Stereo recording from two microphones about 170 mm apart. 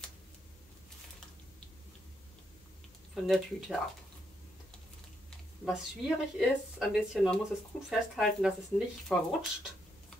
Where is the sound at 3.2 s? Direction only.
Centre (ahead or behind).